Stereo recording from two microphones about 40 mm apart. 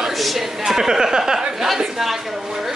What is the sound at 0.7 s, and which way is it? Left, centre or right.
Speech, centre.